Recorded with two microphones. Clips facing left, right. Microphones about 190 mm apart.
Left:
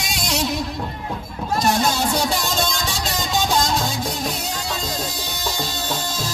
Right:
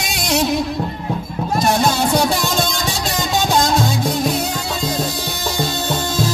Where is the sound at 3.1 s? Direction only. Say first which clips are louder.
Right 3 dB; 55° right (ahead or behind).